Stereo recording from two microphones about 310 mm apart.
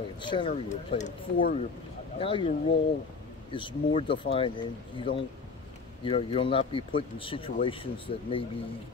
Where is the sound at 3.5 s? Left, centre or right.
Centre.